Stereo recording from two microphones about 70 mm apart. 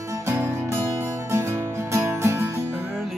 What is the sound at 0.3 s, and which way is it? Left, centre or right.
Music, right.